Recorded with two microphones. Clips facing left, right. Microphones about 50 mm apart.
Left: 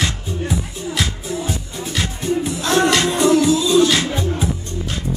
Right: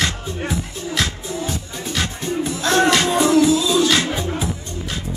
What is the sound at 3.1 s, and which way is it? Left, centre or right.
Music, centre.